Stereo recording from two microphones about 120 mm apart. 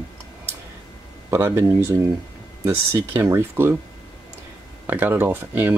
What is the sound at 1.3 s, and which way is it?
Speech, 25° right (ahead or behind).